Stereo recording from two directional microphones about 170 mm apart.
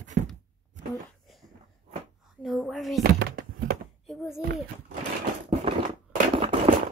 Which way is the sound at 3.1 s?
65° right (ahead or behind).